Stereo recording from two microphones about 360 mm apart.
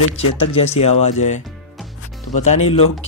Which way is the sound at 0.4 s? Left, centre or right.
Centre.